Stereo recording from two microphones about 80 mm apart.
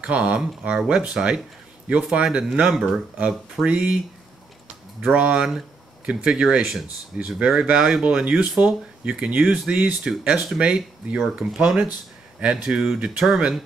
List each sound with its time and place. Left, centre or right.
0.0 s speech: centre
3.6 s speech: centre
5.0 s speech: centre